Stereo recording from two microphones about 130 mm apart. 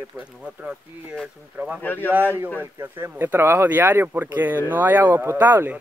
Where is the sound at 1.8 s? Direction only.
15° left (ahead or behind).